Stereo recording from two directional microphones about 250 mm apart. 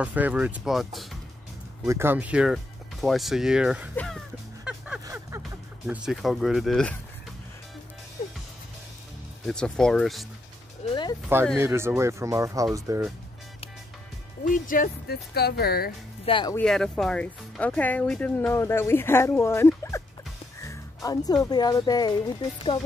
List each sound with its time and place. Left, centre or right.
0.0 s speech: centre
4.6 s vehicle: centre
5.0 s a sound: centre
5.9 s speech: centre
9.5 s speech: centre
10.8 s a sound: left
11.5 s speech: centre
14.4 s speech: left
16.3 s speech: centre
16.5 s speech: centre